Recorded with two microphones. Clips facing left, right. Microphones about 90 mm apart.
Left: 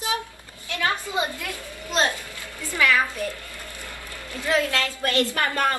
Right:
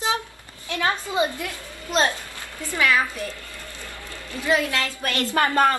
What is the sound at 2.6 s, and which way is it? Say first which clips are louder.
Speech: even; 20° right (ahead or behind).